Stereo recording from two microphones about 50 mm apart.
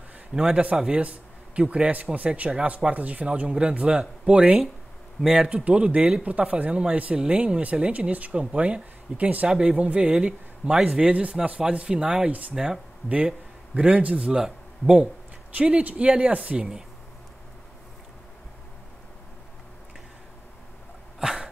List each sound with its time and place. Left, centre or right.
0.3 s speech: centre
5.2 s speech: centre
5.6 s speech: right
12.3 s speech: right
12.5 s speech: centre
13.7 s speech: right
14.3 s a man's voice: centre
15.6 s speech: right
16.5 s speech: centre
21.2 s sneeze: centre